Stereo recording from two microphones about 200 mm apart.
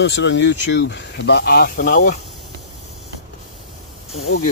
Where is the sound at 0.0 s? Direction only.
60° left (ahead or behind); by 2.1 s 40° left (ahead or behind).